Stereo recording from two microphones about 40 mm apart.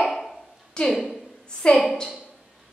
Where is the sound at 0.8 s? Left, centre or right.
Left.